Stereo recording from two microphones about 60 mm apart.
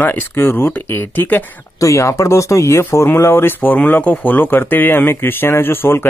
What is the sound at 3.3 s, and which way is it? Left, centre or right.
Speech, left.